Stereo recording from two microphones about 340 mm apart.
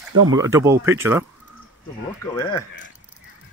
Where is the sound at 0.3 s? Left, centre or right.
Centre.